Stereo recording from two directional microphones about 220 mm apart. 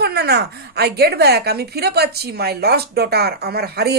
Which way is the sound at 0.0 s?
45° right (ahead or behind).